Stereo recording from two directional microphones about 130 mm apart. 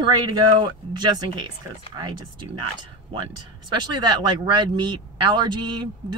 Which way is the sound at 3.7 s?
35° right (ahead or behind).